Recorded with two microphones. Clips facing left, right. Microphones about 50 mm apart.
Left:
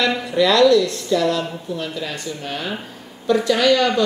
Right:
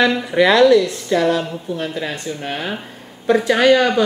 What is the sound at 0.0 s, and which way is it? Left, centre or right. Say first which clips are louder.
Speech: right 3 dB; right.